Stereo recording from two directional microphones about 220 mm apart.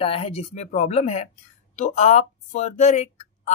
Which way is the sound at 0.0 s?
25° left (ahead or behind).